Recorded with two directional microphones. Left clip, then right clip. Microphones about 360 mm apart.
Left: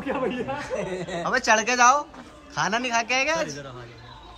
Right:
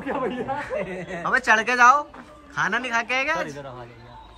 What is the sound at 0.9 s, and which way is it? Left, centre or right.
Speech, centre.